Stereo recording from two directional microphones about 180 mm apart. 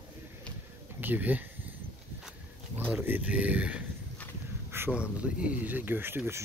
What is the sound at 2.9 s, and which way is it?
Speech, 10° right (ahead or behind).